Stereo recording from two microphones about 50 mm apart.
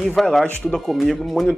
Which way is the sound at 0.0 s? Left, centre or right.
Centre.